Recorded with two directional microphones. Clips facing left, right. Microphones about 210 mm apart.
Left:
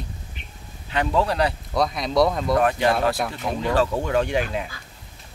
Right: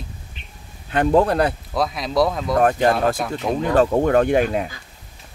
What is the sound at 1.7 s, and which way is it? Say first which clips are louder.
Speech: even; centre (ahead or behind).